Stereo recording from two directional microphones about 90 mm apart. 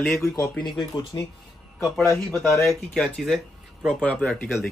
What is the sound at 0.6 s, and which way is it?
Speech, 55° left (ahead or behind).